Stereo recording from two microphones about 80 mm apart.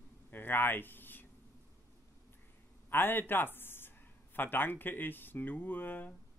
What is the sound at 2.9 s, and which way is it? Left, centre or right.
A man's voice, left.